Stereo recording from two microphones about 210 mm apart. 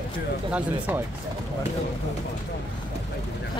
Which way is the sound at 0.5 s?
5° right (ahead or behind).